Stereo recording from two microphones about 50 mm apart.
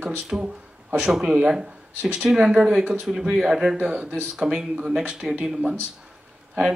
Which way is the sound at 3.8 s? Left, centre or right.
Right.